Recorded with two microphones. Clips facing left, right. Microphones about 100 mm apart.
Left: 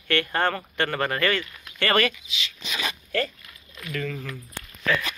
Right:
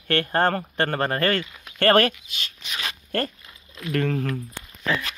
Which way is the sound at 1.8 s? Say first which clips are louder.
Right 5 dB; 50° right (ahead or behind).